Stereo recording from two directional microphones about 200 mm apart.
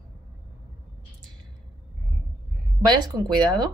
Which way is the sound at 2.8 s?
20° right (ahead or behind).